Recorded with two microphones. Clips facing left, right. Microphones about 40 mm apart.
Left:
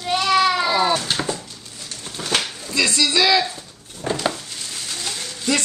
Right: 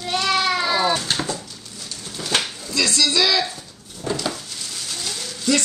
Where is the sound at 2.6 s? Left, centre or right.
Centre.